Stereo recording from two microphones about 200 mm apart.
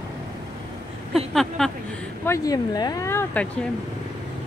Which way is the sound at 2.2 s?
15° left (ahead or behind).